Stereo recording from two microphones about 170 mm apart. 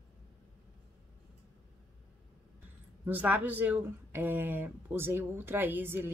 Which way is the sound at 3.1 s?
10° right (ahead or behind).